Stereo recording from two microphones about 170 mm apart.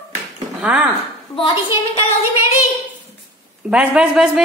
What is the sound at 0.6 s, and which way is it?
Speech, 5° right (ahead or behind).